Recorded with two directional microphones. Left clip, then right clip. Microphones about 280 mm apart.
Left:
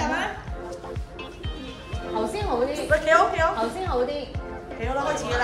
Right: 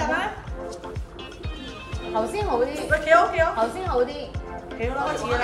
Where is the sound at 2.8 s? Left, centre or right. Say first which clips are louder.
Right 1 dB; centre.